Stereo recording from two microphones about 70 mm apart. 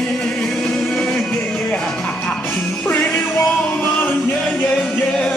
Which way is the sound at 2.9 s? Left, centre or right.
Left.